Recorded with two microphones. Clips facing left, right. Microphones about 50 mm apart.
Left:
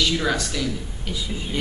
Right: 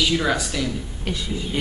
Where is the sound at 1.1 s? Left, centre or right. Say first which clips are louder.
Right 3 dB; right.